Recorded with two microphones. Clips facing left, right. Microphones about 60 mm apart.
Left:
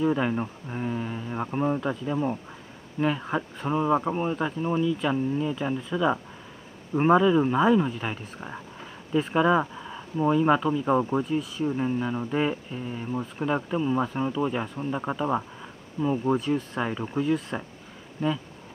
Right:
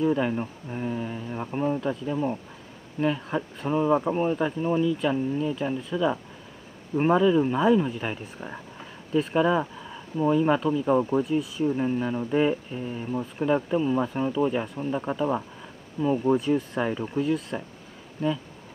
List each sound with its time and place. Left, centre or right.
0.0 s speech: centre
4.1 s speech: centre
11.2 s speech: centre
13.1 s speech: centre
16.0 s speech: centre
16.3 s speech: centre
17.5 s speech: left